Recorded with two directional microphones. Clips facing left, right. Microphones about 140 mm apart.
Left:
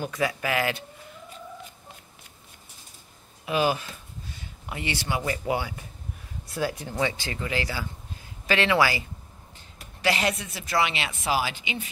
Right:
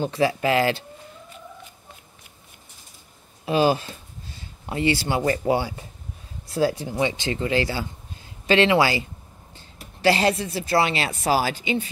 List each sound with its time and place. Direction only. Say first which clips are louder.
0.0 s speech: right 6 dB; 30° right (ahead or behind)
3.4 s a sound: right 5 dB; 30° right (ahead or behind)
5.2 s speech: right 7 dB; 35° right (ahead or behind)